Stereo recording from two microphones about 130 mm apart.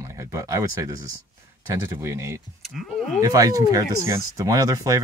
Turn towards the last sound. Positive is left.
turn(degrees=-25)  # may be behind; listen again after turning